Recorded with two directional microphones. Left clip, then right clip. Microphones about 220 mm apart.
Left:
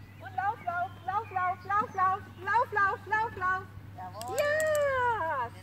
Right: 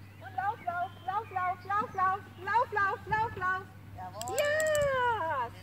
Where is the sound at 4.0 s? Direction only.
15° right (ahead or behind).